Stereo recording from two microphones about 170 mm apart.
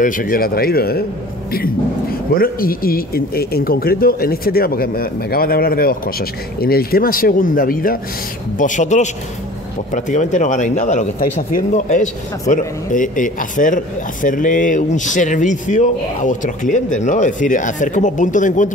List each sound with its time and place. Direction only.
0.0 s speech: 55° left (ahead or behind)
2.3 s speech: 60° left (ahead or behind)
8.5 s speech: 45° left (ahead or behind)